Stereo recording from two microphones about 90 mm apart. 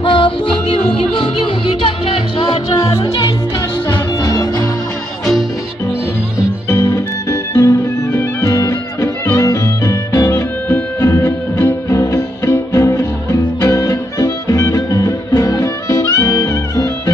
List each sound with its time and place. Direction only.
0.0 s music: 70° left (ahead or behind)
2.7 s music: 45° left (ahead or behind)
6.7 s music: 30° left (ahead or behind)